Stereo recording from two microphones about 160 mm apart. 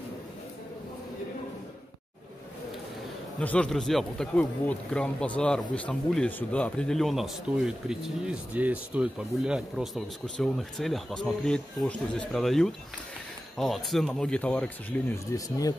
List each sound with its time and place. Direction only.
3.3 s speech: 5° left (ahead or behind)
15.3 s speech: 20° left (ahead or behind)